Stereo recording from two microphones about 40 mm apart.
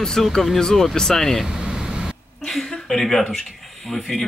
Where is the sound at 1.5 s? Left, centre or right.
Centre.